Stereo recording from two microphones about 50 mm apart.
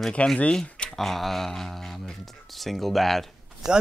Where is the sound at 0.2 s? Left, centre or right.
Left.